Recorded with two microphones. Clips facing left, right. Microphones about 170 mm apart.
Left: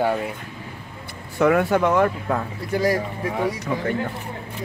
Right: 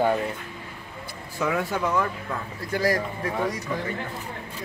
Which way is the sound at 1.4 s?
60° left (ahead or behind).